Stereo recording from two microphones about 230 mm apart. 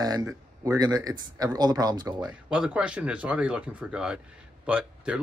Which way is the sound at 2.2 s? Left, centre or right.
Centre.